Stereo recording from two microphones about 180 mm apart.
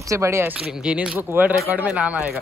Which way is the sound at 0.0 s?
15° right (ahead or behind).